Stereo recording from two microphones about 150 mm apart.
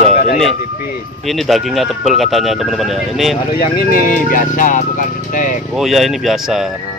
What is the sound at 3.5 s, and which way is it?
Speech, 75° left (ahead or behind).